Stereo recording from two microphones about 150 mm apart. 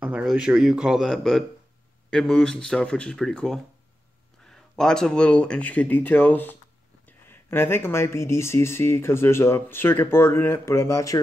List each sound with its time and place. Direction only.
0.0 s speech: 5° right (ahead or behind); by 11.1 s 20° left (ahead or behind)